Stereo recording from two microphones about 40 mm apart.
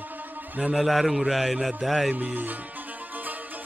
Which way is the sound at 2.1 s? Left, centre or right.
Right.